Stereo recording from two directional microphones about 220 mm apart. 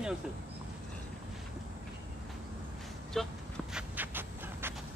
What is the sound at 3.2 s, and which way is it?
Speech, centre (ahead or behind).